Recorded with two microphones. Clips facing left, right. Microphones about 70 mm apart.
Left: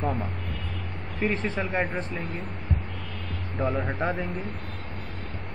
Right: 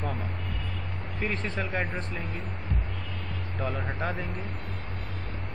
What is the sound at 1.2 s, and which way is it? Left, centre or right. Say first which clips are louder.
Speech: left 5 dB; left.